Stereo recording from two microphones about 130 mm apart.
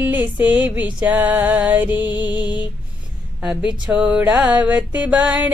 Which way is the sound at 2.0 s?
35° left (ahead or behind).